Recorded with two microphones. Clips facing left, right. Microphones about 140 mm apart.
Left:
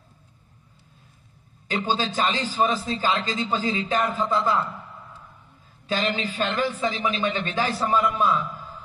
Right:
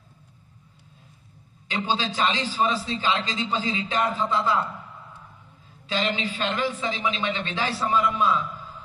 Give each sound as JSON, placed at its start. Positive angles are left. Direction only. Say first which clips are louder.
{"t": 1.7, "sound": "a man's voice", "louder": "left 1 dB", "side_deg": 45}
{"t": 5.9, "sound": "a man's voice", "louder": "left 1 dB", "side_deg": 45}